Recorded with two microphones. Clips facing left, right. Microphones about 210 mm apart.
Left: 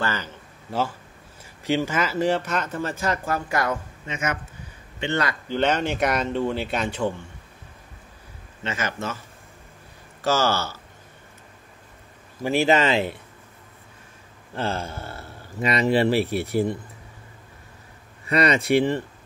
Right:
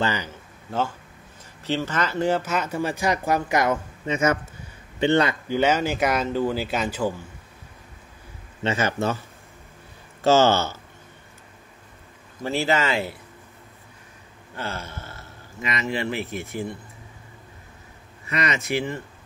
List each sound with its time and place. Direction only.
0.0 s a man's voice: 15° right (ahead or behind)
0.7 s speech: 5° left (ahead or behind); by 3.7 s 20° right (ahead or behind)
5.0 s speech: 30° right (ahead or behind)
5.5 s speech: 5° right (ahead or behind)
8.6 s a man's voice: 35° right (ahead or behind)
10.2 s speech: 25° right (ahead or behind)
12.4 s speech: 15° left (ahead or behind)
14.5 s speech: 30° left (ahead or behind)
18.2 s speech: 35° left (ahead or behind)